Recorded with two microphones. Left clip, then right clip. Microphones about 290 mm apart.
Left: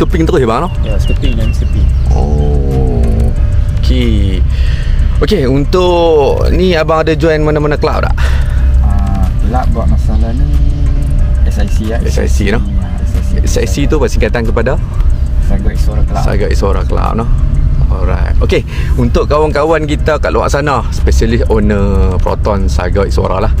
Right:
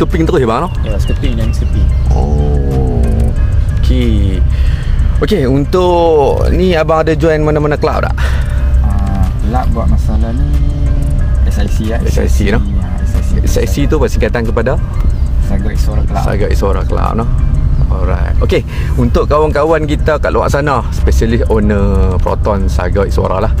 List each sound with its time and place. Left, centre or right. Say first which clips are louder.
0.0 s speech: left 1 dB; centre
2.7 s music: left 1 dB; centre
3.9 s speech: left 1 dB; centre
9.2 s a sound: left 1 dB; centre
11.8 s speech: even; centre
16.1 s speech: even; centre